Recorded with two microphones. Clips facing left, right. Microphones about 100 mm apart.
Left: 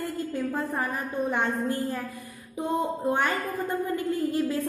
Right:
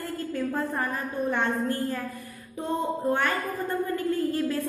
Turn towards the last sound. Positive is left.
turn(degrees=15)  # may be behind; listen again after turning